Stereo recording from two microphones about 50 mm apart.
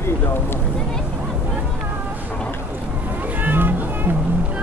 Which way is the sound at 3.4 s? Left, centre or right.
Right.